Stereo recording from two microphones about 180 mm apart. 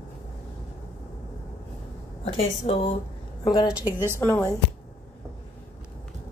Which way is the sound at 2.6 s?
35° left (ahead or behind).